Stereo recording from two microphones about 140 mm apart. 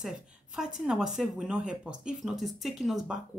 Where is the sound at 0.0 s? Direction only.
5° right (ahead or behind).